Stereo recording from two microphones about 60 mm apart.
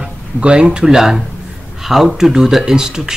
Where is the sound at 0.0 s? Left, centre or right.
Centre.